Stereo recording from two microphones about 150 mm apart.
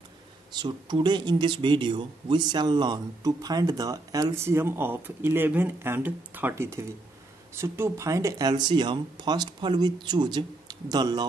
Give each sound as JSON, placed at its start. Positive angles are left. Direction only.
{"t": 0.5, "sound": "speech", "side_deg": -30}